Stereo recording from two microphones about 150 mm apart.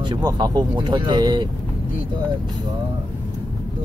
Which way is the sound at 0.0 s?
25° right (ahead or behind).